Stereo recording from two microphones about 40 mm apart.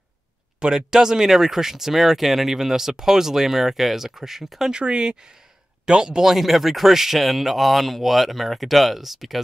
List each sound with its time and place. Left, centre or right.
0.6 s speech: centre
4.6 s speech: right
6.2 s speech: centre